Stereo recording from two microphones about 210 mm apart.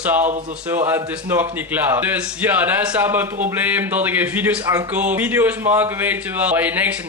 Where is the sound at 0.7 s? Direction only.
10° right (ahead or behind).